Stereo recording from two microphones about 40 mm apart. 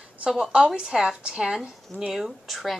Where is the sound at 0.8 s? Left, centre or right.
Centre.